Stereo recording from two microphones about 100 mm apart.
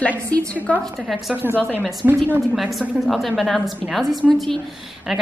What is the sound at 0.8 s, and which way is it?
Speech, centre (ahead or behind).